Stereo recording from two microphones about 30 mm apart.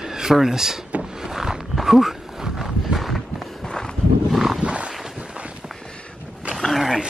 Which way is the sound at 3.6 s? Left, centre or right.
Left.